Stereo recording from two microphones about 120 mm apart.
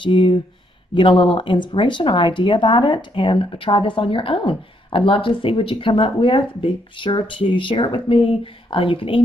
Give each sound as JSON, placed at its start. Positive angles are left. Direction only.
{"t": 0.0, "sound": "speech", "side_deg": 45}